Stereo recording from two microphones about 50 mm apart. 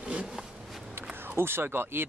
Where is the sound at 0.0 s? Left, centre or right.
Right.